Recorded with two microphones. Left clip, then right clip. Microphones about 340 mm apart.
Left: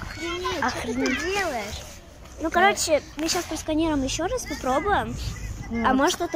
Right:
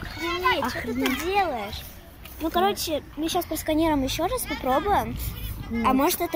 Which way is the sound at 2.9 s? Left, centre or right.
Centre.